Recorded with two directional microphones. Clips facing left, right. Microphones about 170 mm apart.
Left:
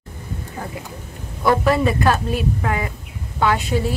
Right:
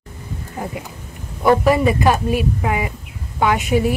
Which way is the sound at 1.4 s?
15° right (ahead or behind).